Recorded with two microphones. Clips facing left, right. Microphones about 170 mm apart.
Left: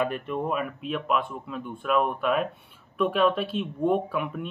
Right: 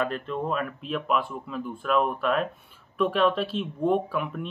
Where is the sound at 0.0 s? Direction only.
10° left (ahead or behind).